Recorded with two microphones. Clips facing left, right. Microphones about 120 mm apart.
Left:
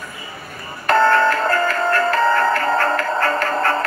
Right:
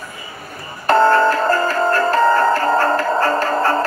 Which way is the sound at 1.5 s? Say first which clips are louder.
Right 2 dB; 30° right (ahead or behind).